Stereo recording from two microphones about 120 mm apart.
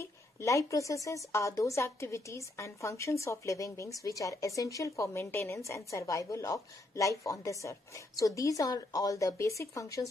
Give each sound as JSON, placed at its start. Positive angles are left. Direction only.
{"t": 0.0, "sound": "a woman's voice", "side_deg": 25}